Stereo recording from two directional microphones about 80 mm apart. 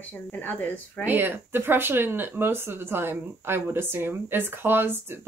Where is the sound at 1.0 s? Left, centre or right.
Right.